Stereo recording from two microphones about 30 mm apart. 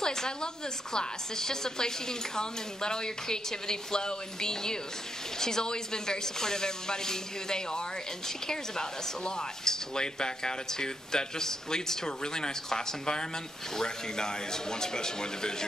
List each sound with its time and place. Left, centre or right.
0.0 s speech: left